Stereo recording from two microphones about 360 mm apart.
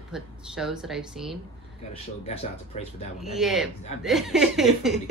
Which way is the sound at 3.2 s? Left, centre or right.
Centre.